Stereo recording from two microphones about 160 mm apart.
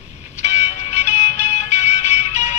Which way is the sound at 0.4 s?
45° left (ahead or behind).